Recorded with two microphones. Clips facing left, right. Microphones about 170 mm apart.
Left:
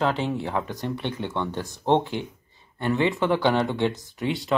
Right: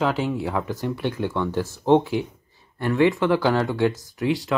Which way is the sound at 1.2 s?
25° left (ahead or behind).